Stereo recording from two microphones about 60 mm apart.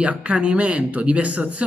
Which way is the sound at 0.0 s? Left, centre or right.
Right.